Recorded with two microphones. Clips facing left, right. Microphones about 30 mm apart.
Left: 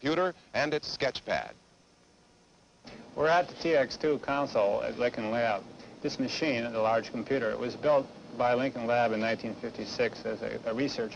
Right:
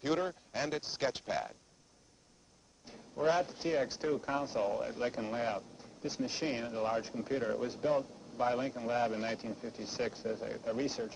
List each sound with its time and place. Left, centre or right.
0.0 s speech: left
2.8 s speech: left